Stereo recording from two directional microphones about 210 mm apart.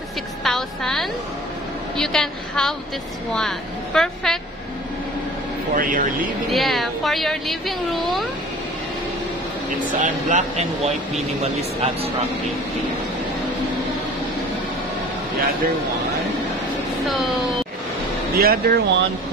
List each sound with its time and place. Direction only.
0.4 s a woman's voice: centre (ahead or behind)
5.8 s speech: 40° right (ahead or behind)
6.5 s a woman's voice: centre (ahead or behind)
9.9 s speech: 35° right (ahead or behind)
18.3 s speech: 45° right (ahead or behind)